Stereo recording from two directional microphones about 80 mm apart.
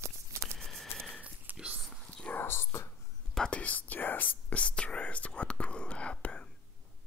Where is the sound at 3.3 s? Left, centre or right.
Centre.